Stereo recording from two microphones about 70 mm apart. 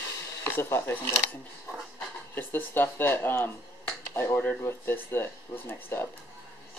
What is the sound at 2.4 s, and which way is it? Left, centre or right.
Speech, left.